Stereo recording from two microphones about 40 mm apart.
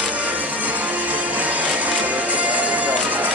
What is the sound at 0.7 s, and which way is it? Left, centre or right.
Music, right.